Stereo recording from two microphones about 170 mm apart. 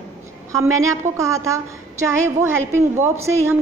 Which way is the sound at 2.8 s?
15° right (ahead or behind).